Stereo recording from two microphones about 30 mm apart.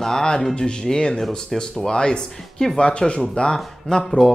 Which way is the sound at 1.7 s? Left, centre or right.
Left.